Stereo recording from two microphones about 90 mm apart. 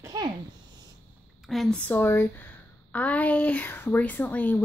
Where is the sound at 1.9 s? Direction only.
25° left (ahead or behind).